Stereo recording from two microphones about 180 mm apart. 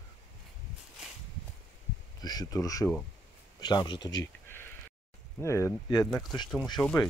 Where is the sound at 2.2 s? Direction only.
20° left (ahead or behind).